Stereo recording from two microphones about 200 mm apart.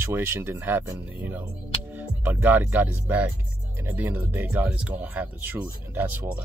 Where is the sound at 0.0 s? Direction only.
10° right (ahead or behind).